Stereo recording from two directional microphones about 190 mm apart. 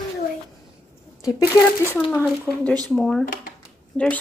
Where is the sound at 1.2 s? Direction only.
20° left (ahead or behind).